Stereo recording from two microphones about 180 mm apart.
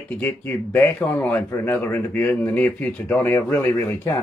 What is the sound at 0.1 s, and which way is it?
Speech, 10° left (ahead or behind).